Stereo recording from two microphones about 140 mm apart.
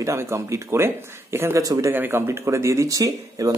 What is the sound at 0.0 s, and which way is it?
Speech, 20° right (ahead or behind).